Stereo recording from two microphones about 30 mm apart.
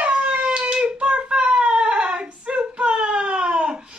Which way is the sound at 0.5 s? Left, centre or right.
Right.